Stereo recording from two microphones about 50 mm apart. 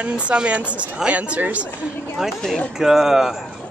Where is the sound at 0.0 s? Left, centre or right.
Right.